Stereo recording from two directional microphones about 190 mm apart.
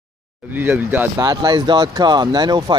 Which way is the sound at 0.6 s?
10° right (ahead or behind).